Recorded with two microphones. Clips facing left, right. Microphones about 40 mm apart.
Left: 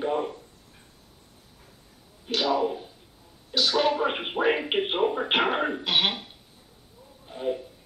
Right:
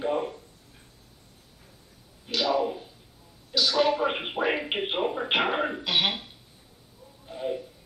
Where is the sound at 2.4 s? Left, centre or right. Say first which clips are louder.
Left 1 dB; centre.